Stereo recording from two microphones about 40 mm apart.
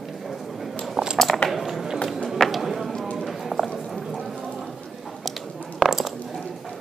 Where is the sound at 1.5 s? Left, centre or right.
Centre.